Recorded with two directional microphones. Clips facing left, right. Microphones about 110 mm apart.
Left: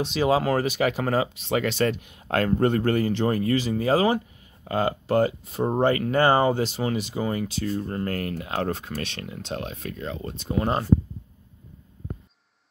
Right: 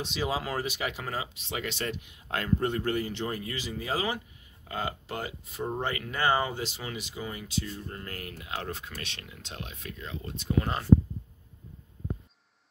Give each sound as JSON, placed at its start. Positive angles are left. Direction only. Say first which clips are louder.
{"t": 0.2, "sound": "speech", "louder": "left 10 dB", "side_deg": 60}
{"t": 1.9, "sound": "speech", "louder": "left 8 dB", "side_deg": 60}
{"t": 4.6, "sound": "speech", "louder": "left 10 dB", "side_deg": 55}